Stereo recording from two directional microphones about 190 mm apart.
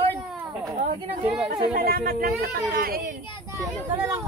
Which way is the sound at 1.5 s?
30° right (ahead or behind).